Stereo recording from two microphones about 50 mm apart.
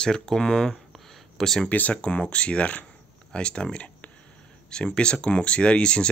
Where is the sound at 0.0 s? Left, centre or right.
Centre.